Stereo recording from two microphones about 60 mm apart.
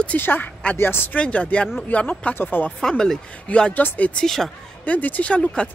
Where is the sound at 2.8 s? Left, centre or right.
Centre.